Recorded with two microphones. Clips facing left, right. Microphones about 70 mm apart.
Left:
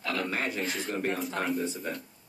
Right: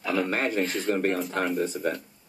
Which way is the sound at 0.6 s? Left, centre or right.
Centre.